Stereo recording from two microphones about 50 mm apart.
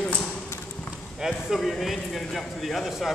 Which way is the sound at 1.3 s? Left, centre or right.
Centre.